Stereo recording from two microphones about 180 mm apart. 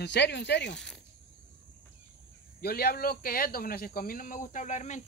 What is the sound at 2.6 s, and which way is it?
Speech, 60° left (ahead or behind).